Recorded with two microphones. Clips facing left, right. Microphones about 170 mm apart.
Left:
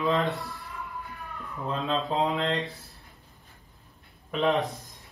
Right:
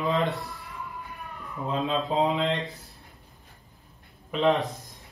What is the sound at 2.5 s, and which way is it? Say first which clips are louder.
Speech: even; centre (ahead or behind).